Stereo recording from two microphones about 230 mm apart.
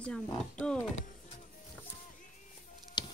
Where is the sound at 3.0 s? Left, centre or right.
Centre.